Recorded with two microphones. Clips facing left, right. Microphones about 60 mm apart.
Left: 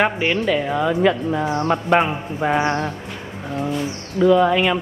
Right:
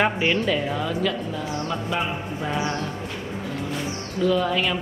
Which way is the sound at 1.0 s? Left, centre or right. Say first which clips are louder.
Left 8 dB; left.